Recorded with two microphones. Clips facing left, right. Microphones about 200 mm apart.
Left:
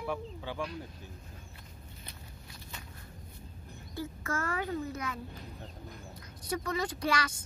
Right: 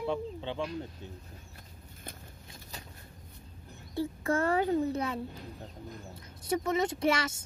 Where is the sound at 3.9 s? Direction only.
30° right (ahead or behind).